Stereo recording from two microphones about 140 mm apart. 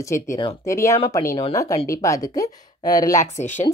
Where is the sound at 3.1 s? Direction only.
60° left (ahead or behind).